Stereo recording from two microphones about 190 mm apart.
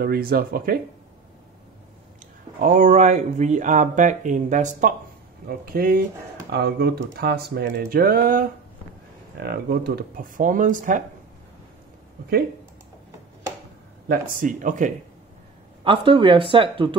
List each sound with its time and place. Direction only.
0.0 s speech: 50° right (ahead or behind)
2.6 s speech: 40° right (ahead or behind)
14.4 s speech: 45° right (ahead or behind)
15.8 s speech: 25° right (ahead or behind)